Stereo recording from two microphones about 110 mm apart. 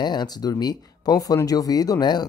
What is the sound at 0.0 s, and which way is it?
Speech, 40° left (ahead or behind).